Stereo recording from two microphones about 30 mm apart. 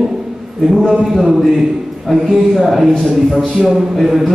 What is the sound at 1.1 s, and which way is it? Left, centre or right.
Speech, centre.